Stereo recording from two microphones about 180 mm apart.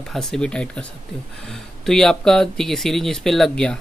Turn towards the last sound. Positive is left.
turn(degrees=5)  # may be behind; listen again after turning